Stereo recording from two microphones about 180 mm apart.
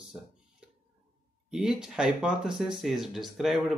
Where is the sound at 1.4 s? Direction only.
5° right (ahead or behind).